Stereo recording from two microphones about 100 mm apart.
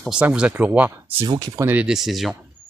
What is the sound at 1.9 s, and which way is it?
Speech, centre (ahead or behind).